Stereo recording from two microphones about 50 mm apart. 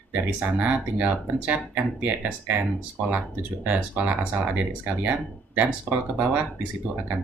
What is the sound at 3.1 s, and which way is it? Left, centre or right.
Speech, right.